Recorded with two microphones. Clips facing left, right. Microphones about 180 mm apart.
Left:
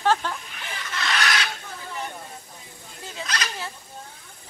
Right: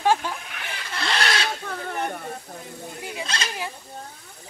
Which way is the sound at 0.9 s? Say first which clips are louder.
Right 1 dB; 30° right (ahead or behind).